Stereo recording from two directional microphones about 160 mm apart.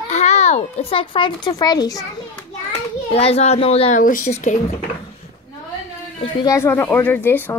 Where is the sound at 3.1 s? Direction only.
40° left (ahead or behind).